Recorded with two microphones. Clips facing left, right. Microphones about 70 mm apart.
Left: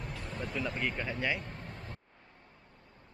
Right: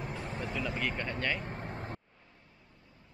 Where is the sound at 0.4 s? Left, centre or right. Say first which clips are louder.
Left 1 dB; centre.